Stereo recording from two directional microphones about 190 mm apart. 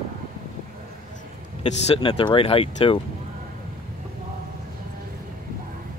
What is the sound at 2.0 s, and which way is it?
Speech, 25° left (ahead or behind).